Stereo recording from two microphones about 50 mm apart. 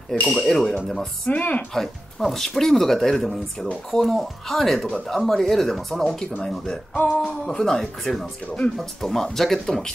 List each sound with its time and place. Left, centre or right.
0.3 s speech: centre
1.2 s speech: left
1.7 s speech: centre
6.9 s music: left
7.2 s speech: centre